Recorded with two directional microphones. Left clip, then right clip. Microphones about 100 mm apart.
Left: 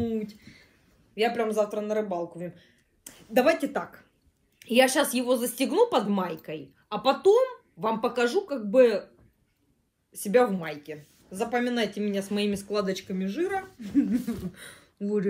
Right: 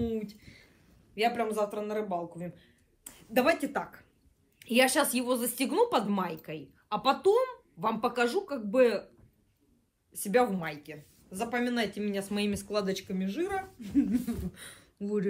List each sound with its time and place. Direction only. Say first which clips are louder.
0.0 s a sound: left 3 dB; 90° left
1.1 s a man's voice: left 4 dB; 45° left (ahead or behind)
10.1 s a woman's voice: left 4 dB; 50° left (ahead or behind); by 15.2 s 80° left